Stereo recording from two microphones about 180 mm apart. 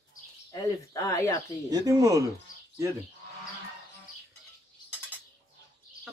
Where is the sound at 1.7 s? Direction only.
20° right (ahead or behind).